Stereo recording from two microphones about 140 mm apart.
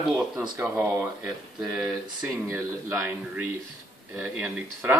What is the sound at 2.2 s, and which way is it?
Speech, 20° right (ahead or behind).